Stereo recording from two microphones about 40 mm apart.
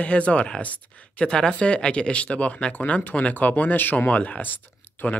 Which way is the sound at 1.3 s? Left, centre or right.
Centre.